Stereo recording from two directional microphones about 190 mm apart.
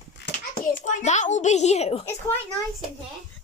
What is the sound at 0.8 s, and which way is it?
A child's voice, 40° left (ahead or behind).